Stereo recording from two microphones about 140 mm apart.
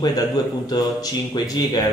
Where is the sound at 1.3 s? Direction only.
30° left (ahead or behind).